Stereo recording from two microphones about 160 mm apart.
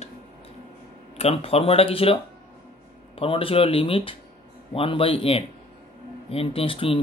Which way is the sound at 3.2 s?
35° left (ahead or behind).